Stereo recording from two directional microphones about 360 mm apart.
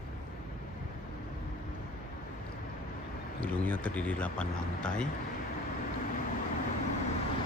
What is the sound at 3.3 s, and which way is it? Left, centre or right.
A man's voice, centre.